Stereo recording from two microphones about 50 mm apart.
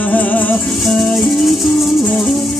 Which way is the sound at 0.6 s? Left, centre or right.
Centre.